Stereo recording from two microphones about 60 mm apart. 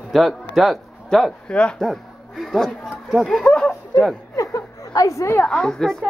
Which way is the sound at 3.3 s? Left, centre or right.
Centre.